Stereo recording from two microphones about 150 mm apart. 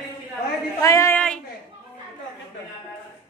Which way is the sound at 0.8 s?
20° left (ahead or behind).